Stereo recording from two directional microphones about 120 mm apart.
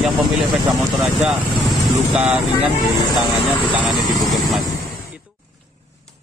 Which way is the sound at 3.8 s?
Centre (ahead or behind).